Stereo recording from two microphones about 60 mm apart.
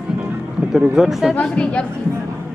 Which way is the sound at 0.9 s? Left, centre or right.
Centre.